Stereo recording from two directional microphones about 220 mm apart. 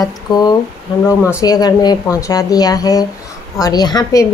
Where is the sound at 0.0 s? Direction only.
20° left (ahead or behind).